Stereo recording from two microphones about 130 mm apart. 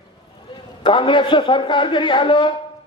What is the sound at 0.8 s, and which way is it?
A man's voice, 40° left (ahead or behind).